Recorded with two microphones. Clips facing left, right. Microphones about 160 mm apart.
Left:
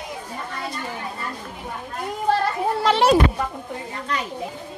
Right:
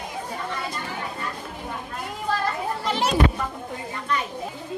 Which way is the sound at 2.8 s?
75° left (ahead or behind).